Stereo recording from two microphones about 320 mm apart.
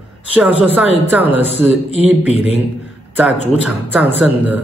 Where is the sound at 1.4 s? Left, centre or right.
Centre.